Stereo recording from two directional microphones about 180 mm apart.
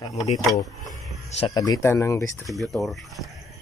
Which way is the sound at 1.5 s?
20° left (ahead or behind).